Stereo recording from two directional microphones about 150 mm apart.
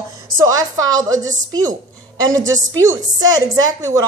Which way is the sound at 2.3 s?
20° right (ahead or behind).